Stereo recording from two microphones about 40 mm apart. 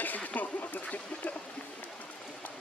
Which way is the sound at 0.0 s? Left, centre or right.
Left.